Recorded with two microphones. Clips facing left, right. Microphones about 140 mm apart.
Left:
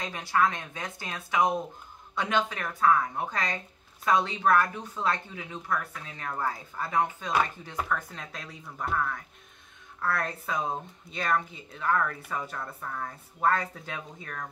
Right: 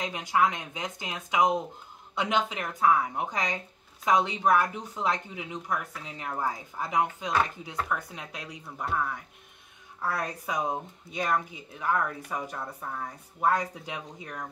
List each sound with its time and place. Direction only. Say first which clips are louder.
0.0 s speech: right 1 dB; 15° right (ahead or behind)